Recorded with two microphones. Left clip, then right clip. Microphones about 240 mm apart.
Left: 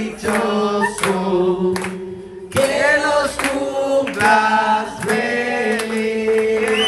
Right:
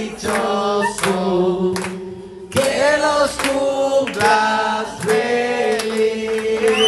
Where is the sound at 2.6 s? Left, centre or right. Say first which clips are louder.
Even; centre.